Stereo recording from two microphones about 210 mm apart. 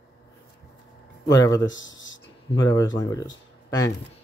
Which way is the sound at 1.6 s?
65° left (ahead or behind).